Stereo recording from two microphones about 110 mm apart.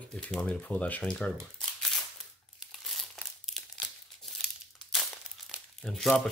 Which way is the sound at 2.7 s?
Centre (ahead or behind).